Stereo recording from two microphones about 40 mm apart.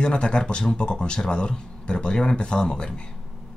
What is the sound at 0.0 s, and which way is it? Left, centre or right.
Speech, left.